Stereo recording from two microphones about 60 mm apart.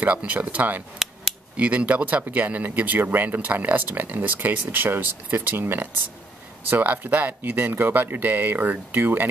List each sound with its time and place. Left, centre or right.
0.0 s speech: right